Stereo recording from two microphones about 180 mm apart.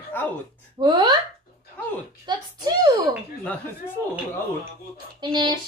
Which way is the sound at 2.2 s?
25° right (ahead or behind).